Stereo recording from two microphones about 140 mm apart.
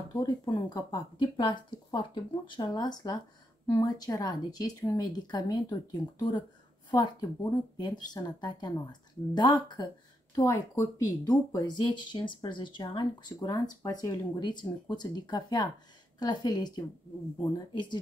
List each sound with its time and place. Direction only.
0.2 s speech: 25° left (ahead or behind)
10.3 s speech: 20° left (ahead or behind)